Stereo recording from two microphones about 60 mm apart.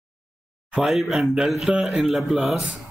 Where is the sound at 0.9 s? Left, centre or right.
Centre.